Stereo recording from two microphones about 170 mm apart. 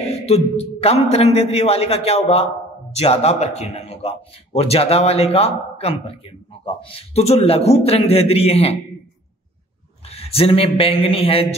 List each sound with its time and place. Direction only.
0.3 s speech: 40° left (ahead or behind)
10.0 s a man's voice: 35° left (ahead or behind)